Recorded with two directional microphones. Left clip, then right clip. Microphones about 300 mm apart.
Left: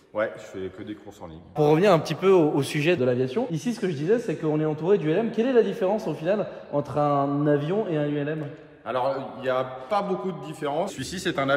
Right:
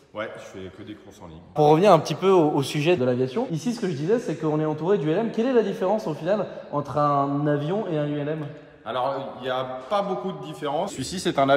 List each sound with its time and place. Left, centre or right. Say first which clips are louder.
0.2 s a man's voice: left 5 dB; centre
1.6 s a man's voice: right 3 dB; centre
11.1 s speech: right 4 dB; centre